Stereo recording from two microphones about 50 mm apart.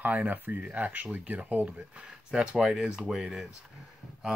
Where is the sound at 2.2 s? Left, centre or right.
Centre.